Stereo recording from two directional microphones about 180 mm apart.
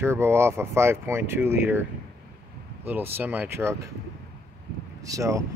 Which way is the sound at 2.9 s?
10° right (ahead or behind).